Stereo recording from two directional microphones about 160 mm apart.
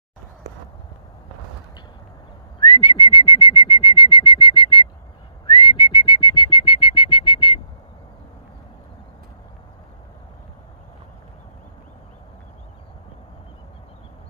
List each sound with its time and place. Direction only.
2.6 s whistling: 30° left (ahead or behind)